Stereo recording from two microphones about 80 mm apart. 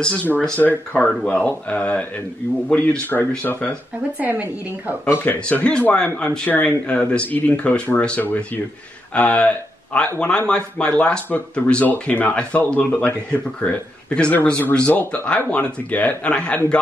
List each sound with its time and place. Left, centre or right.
0.0 s speech: centre
4.2 s a woman's voice: right
5.0 s speech: left